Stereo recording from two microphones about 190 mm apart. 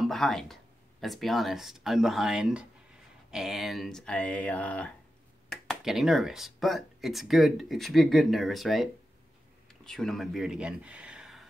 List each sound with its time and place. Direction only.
0.0 s speech: centre (ahead or behind)